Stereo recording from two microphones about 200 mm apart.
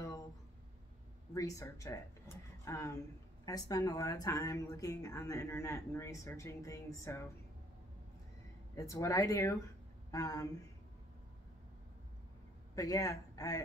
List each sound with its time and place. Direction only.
1.3 s speech: 15° left (ahead or behind)
8.7 s speech: 15° left (ahead or behind)
12.7 s a man's voice: 15° left (ahead or behind)